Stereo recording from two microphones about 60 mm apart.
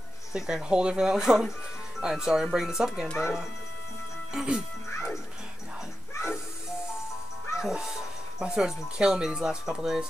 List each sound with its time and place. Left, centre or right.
0.3 s speech: centre
4.3 s speech: centre
4.9 s music: left
6.1 s hiss: left
7.6 s speech: centre